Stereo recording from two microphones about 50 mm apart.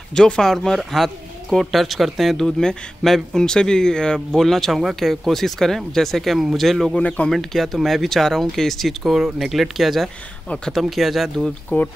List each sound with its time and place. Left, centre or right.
0.1 s speech: centre
2.3 s speech: centre
4.3 s speech: centre
7.0 s speech: left
7.2 s speech: centre
11.7 s speech: left